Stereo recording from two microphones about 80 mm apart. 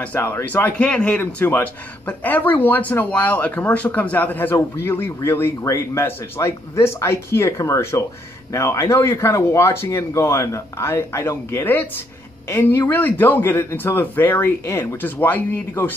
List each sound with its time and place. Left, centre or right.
0.0 s speech: left
1.2 s speech: left
11.6 s speech: left